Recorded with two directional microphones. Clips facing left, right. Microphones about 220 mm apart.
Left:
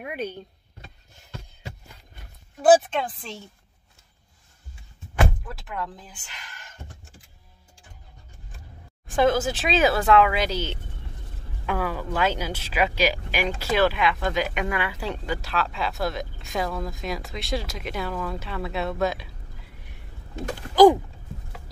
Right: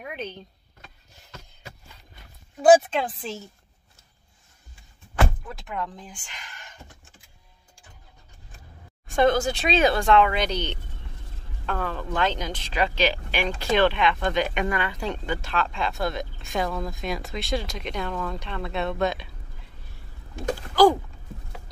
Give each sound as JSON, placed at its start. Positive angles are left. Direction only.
{"t": 0.0, "sound": "speech", "side_deg": 10}
{"t": 2.6, "sound": "speech", "side_deg": 0}
{"t": 5.1, "sound": "door", "side_deg": 0}
{"t": 9.0, "sound": "speech", "side_deg": 0}
{"t": 20.7, "sound": "speech", "side_deg": 15}